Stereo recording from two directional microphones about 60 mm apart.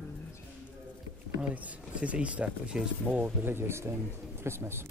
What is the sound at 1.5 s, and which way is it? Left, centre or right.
Speech, right.